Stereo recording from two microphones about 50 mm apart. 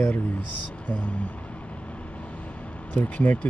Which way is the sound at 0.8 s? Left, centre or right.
Left.